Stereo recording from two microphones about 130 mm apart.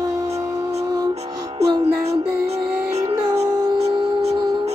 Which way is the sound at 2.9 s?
50° right (ahead or behind).